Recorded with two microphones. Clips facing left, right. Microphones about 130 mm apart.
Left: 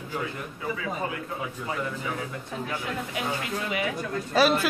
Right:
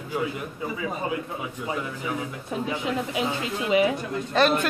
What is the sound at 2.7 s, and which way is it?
Speech, 20° right (ahead or behind).